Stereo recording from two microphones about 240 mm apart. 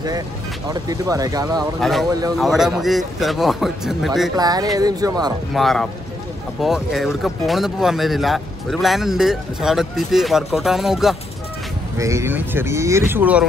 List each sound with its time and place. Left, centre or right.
0.7 s speech: centre
1.8 s speech: centre
2.0 s speech: centre
2.3 s speech: centre
4.4 s speech: centre
5.5 s speech: centre
12.0 s speech: centre